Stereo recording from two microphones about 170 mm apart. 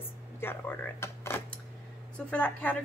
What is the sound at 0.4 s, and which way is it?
A woman's voice, 15° left (ahead or behind).